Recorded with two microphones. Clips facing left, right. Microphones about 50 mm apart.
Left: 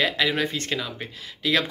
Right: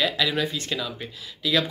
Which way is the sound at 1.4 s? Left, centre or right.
Left.